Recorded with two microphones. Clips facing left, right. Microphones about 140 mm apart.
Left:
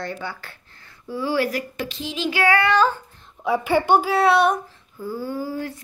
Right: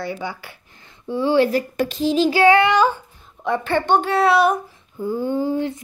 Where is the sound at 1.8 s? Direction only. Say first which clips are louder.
Right 10 dB; 45° right (ahead or behind).